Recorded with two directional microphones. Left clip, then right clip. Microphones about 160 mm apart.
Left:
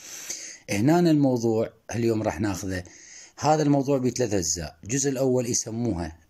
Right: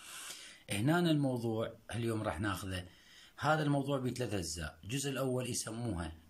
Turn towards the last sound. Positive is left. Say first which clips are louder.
# left 12 dB
turn(degrees=35)  # may be behind; listen again after turning